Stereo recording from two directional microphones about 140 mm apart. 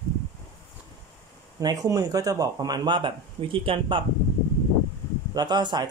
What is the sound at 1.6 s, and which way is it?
Speech, 25° right (ahead or behind).